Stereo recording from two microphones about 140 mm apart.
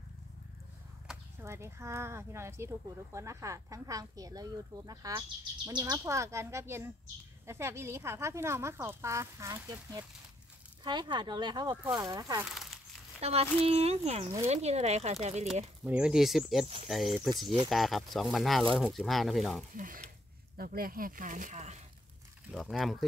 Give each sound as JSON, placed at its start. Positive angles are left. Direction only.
{"t": 1.4, "sound": "speech", "side_deg": -20}
{"t": 10.8, "sound": "speech", "side_deg": -30}
{"t": 13.2, "sound": "speech", "side_deg": -45}
{"t": 15.8, "sound": "speech", "side_deg": -5}
{"t": 19.7, "sound": "speech", "side_deg": -75}
{"t": 20.5, "sound": "speech", "side_deg": -90}
{"t": 22.5, "sound": "speech", "side_deg": 0}